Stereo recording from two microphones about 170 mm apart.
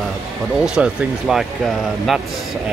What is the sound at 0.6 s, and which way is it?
Speech, 5° right (ahead or behind).